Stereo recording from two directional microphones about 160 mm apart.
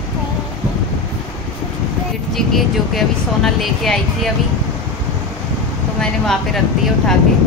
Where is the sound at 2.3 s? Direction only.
Centre (ahead or behind).